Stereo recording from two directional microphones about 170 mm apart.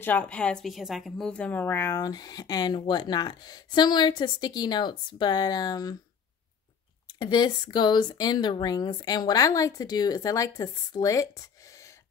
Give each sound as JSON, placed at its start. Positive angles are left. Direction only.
{"t": 0.0, "sound": "speech", "side_deg": 10}
{"t": 7.2, "sound": "speech", "side_deg": 25}